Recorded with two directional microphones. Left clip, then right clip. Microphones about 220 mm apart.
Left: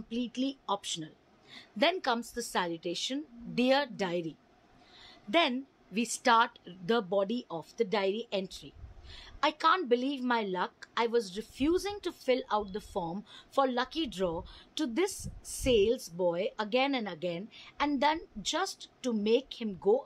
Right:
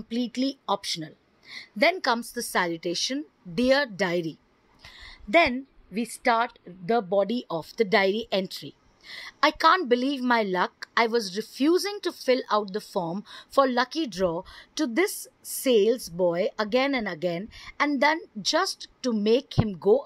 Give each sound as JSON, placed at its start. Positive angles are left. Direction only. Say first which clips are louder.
{"t": 0.1, "sound": "a woman's voice", "louder": "right 6 dB", "side_deg": -20}
{"t": 4.9, "sound": "a sound", "louder": "right 8 dB", "side_deg": -20}
{"t": 6.2, "sound": "speech", "louder": "right 2 dB", "side_deg": -10}